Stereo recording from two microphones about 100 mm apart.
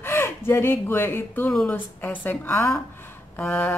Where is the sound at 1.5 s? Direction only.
5° left (ahead or behind).